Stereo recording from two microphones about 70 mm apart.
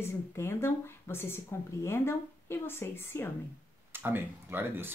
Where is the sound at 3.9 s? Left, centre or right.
Right.